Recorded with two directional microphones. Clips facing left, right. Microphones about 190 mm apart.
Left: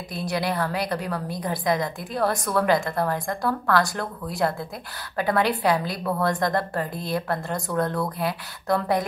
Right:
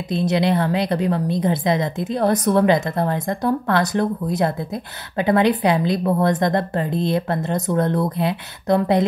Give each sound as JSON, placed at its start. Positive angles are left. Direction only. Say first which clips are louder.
{"t": 0.1, "sound": "a woman's voice", "louder": "right 8 dB", "side_deg": -20}